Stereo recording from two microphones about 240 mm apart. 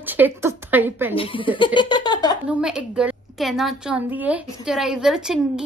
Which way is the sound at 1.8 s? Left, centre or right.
Centre.